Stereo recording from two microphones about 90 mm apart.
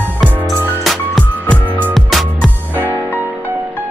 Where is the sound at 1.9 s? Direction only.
Centre (ahead or behind).